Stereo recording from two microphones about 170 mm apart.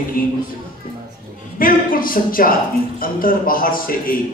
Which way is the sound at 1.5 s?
55° left (ahead or behind).